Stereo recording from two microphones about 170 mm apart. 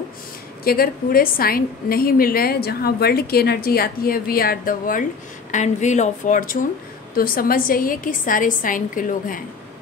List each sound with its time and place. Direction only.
0.7 s a woman's voice: 60° left (ahead or behind)
5.5 s a woman's voice: 45° left (ahead or behind)